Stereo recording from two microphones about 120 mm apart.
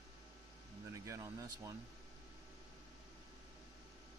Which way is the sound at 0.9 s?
25° right (ahead or behind).